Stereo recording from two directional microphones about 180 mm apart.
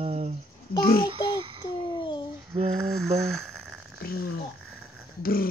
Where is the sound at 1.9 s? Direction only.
25° left (ahead or behind).